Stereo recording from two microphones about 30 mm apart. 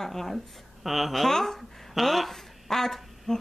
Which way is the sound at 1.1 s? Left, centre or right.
Centre.